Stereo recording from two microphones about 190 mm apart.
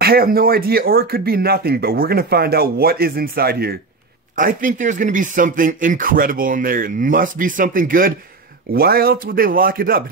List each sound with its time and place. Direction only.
0.0 s speech: 50° right (ahead or behind)